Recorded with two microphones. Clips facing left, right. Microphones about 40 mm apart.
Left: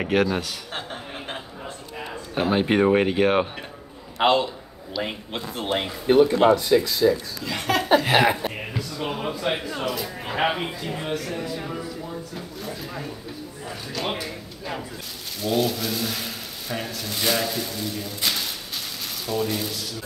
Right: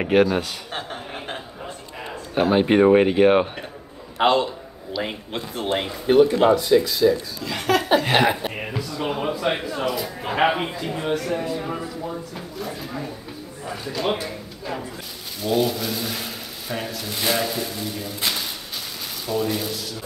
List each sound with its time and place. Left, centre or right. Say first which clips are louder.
0.0 s speech: right 4 dB; centre
2.3 s speech: right 4 dB; centre
8.3 s speech: even; right
8.5 s speech: right 2 dB; centre
15.4 s speech: right 2 dB; centre